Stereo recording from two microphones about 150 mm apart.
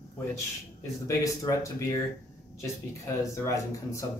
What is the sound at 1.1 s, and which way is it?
Speech, 20° left (ahead or behind).